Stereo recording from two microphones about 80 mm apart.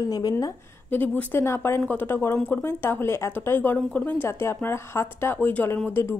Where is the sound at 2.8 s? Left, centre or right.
Left.